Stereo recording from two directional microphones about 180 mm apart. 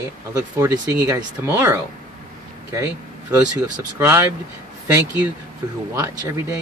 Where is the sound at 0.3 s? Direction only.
15° right (ahead or behind).